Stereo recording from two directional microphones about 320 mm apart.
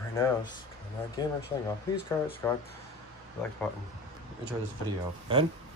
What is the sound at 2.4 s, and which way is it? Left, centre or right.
Speech, centre.